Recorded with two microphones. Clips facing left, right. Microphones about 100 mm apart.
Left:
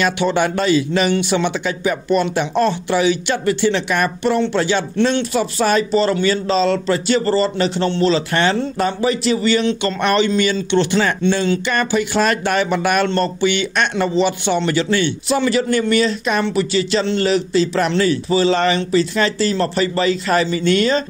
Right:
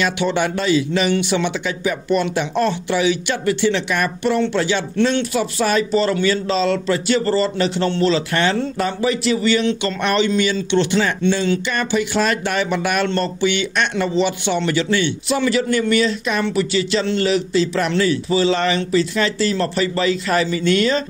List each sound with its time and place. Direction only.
0.0 s speech: 45° left (ahead or behind)